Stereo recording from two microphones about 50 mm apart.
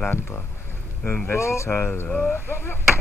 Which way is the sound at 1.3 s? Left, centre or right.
Left.